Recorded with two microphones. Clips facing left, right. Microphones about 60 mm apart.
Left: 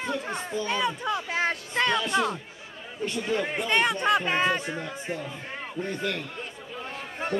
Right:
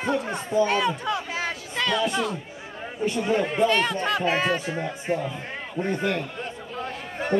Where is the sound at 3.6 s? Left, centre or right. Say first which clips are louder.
Left 2 dB; centre.